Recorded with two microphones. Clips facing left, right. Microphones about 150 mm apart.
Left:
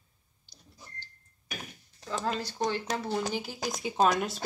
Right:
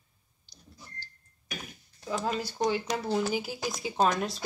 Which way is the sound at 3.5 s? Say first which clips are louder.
Even; 40° left (ahead or behind).